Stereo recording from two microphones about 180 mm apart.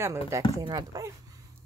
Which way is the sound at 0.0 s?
15° right (ahead or behind).